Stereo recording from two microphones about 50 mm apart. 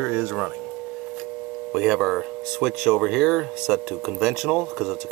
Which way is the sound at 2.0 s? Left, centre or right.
Centre.